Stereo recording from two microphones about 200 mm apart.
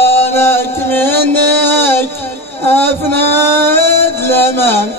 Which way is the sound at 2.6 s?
10° left (ahead or behind).